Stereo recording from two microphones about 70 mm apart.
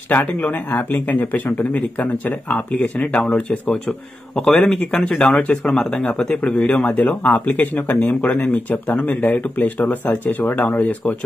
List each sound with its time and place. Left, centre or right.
0.1 s a man's voice: left